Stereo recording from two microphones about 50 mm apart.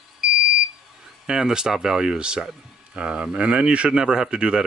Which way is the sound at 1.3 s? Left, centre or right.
Centre.